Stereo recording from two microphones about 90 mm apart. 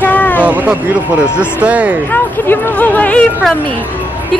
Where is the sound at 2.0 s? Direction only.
20° left (ahead or behind).